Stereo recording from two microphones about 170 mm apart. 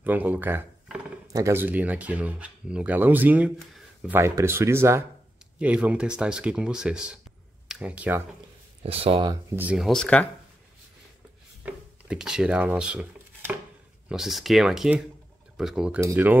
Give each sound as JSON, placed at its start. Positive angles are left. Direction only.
{"t": 0.0, "sound": "a sound", "side_deg": -10}
{"t": 1.2, "sound": "speech", "side_deg": -20}
{"t": 3.7, "sound": "a sound", "side_deg": -5}
{"t": 4.2, "sound": "speech", "side_deg": -15}
{"t": 8.8, "sound": "speech", "side_deg": -35}
{"t": 9.3, "sound": "speech", "side_deg": -10}
{"t": 11.6, "sound": "speech", "side_deg": -5}
{"t": 16.0, "sound": "speech", "side_deg": -15}